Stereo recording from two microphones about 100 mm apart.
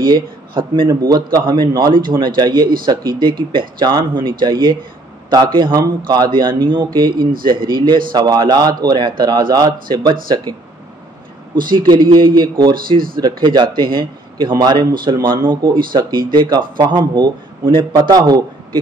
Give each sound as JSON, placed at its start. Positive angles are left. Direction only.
{"t": 0.0, "sound": "speech", "side_deg": -55}
{"t": 0.8, "sound": "a man's voice", "side_deg": -40}
{"t": 1.4, "sound": "speech", "side_deg": -50}
{"t": 11.7, "sound": "speech", "side_deg": -50}
{"t": 15.2, "sound": "a man's voice", "side_deg": -55}